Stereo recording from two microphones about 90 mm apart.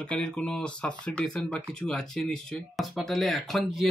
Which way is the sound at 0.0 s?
10° left (ahead or behind).